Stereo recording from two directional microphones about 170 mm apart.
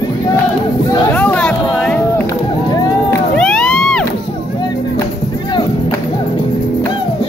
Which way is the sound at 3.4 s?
5° left (ahead or behind).